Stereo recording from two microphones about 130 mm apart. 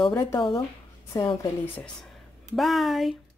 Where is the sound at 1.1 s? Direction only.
30° left (ahead or behind).